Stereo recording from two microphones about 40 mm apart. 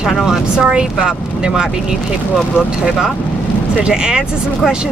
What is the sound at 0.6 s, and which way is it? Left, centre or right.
Speech, right.